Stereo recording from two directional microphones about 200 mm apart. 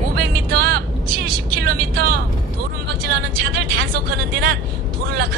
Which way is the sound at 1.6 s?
50° right (ahead or behind).